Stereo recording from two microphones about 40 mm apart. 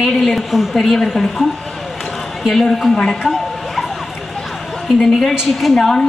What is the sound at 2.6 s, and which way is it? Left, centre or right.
Speech, centre.